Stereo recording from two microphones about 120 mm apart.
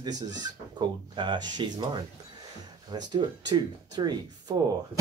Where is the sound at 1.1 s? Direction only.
40° right (ahead or behind).